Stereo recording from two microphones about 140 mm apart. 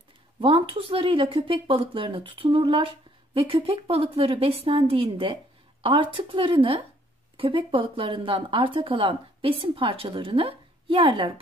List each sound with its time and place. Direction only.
0.4 s speech: 40° right (ahead or behind)